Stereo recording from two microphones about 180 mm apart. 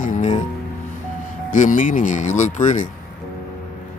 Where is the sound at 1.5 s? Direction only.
45° left (ahead or behind).